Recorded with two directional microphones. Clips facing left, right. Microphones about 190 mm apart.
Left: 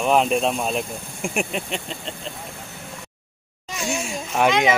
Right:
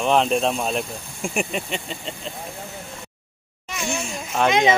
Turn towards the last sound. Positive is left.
turn(degrees=10)  # may be behind; listen again after turning